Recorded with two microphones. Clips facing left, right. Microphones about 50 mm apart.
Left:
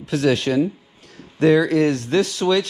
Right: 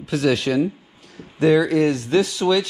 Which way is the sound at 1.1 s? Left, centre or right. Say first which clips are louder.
Left 1 dB; left.